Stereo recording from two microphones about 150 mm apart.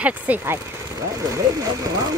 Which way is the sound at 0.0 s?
10° right (ahead or behind).